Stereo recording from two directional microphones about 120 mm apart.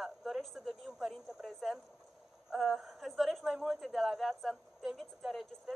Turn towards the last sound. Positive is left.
turn(degrees=0)  # may be behind; listen again after turning